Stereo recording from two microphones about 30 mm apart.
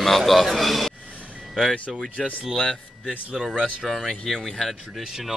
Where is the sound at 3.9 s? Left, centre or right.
Centre.